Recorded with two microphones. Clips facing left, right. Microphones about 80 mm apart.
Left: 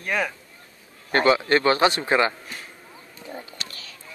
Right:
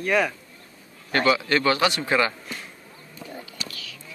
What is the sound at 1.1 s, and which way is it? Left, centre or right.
A child's voice, left.